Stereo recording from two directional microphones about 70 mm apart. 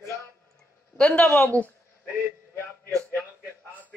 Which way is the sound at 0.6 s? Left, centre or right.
Centre.